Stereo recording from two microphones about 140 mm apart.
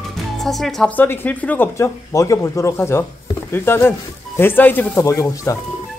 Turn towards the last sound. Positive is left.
turn(degrees=20)  # may be behind; listen again after turning